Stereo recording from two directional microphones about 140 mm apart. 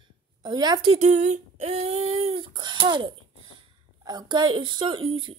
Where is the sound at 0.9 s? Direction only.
55° right (ahead or behind).